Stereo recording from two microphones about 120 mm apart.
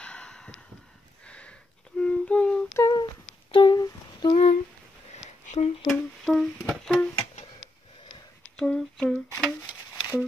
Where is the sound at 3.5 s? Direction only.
40° left (ahead or behind).